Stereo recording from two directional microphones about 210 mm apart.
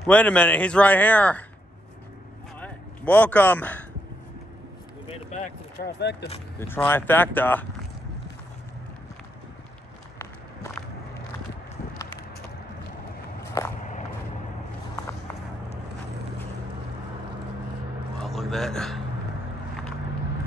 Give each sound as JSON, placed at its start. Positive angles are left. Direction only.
{"t": 0.0, "sound": "speech", "side_deg": 5}
{"t": 2.6, "sound": "a sound", "side_deg": 5}
{"t": 5.3, "sound": "a sound", "side_deg": 35}
{"t": 5.9, "sound": "speech", "side_deg": 55}
{"t": 6.7, "sound": "speech", "side_deg": 10}
{"t": 13.6, "sound": "speech", "side_deg": 15}
{"t": 18.2, "sound": "a man's voice", "side_deg": 0}